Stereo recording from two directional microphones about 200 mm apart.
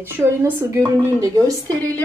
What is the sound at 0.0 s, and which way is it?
Speech, 10° right (ahead or behind).